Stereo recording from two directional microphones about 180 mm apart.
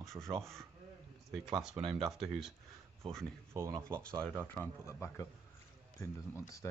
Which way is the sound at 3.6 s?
15° right (ahead or behind).